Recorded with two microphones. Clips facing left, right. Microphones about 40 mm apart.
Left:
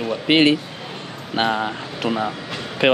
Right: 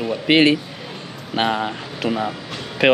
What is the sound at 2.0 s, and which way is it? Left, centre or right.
Speech, left.